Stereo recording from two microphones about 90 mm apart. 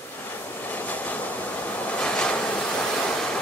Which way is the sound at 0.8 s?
15° left (ahead or behind).